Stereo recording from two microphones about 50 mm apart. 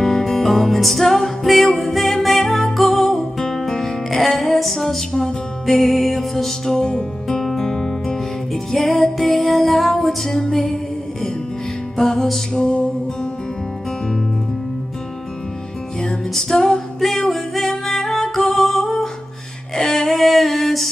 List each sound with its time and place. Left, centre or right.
0.0 s music: centre
12.5 s music: centre
16.0 s music: centre
19.7 s female singing: centre